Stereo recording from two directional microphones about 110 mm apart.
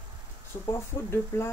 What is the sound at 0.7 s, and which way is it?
Speech, 25° left (ahead or behind).